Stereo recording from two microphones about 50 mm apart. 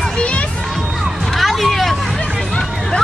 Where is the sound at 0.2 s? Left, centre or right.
Left.